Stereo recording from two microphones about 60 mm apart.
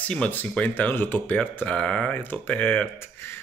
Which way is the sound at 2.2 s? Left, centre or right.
Left.